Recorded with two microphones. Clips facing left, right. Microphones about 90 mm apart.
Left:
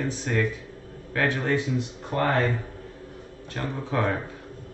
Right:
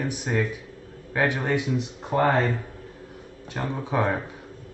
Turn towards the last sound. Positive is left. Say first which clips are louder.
# right 1 dB
turn(degrees=-15)  # may be behind; listen again after turning